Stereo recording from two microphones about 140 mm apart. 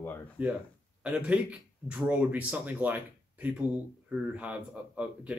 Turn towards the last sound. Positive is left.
turn(degrees=-10)  # may be behind; listen again after turning